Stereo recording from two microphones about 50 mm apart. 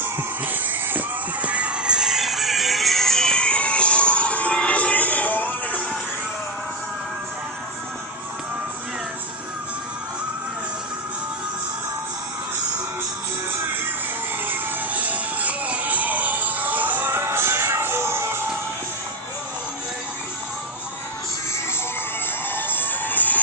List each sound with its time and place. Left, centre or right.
0.0 s music: right
2.0 s music: centre; by 5.8 s left
14.9 s music: right
17.1 s music: right
22.6 s music: left